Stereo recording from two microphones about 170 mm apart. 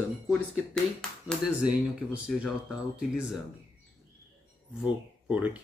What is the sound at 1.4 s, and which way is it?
Speech, 5° right (ahead or behind).